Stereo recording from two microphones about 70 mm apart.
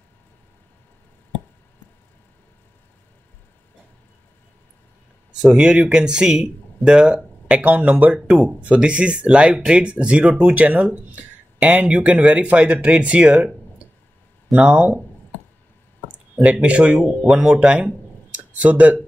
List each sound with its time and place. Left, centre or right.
5.3 s speech: centre
14.6 s speech: centre
16.3 s speech: centre